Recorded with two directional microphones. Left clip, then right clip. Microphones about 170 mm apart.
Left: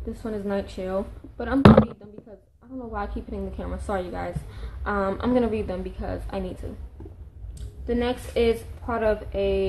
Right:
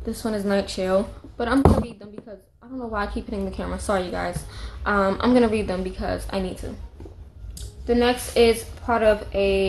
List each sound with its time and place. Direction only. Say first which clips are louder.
0.0 s a woman's voice: right 5 dB; 10° right (ahead or behind)
7.8 s a woman's voice: right 6 dB; centre (ahead or behind)